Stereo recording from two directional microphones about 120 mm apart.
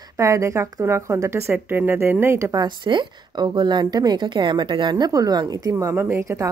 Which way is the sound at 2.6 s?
40° right (ahead or behind).